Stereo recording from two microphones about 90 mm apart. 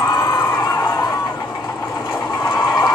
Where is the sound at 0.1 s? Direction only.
50° left (ahead or behind).